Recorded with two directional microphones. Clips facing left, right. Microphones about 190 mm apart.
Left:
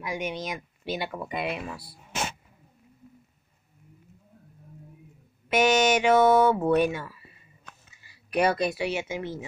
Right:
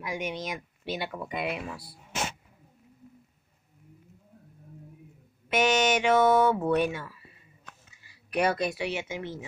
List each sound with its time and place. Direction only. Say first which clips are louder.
0.0 s a woman's voice: left 2 dB; centre (ahead or behind)
5.7 s mantra: left 3 dB; 45° left (ahead or behind)
5.9 s speech: left 2 dB; 10° left (ahead or behind)
8.3 s speech: left 2 dB; centre (ahead or behind)